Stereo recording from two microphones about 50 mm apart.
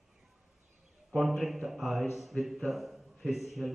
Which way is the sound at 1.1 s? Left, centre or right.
Centre.